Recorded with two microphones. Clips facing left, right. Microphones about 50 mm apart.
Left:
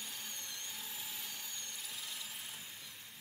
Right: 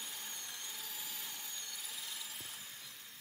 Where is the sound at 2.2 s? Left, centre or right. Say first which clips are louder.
Left 1 dB; centre.